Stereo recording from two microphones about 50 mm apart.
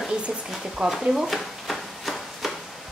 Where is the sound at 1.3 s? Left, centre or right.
Centre.